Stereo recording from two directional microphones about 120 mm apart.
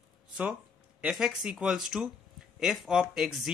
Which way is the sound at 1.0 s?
5° right (ahead or behind).